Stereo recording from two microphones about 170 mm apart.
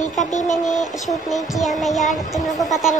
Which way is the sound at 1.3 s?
Centre (ahead or behind).